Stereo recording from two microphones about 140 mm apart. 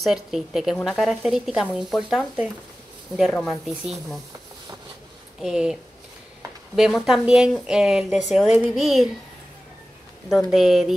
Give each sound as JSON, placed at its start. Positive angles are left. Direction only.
{"t": 0.0, "sound": "speech", "side_deg": 0}
{"t": 5.4, "sound": "speech", "side_deg": -5}
{"t": 10.3, "sound": "speech", "side_deg": 0}